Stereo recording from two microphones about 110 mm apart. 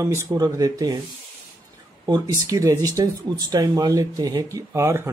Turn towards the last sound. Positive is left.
turn(degrees=-25)  # may be behind; listen again after turning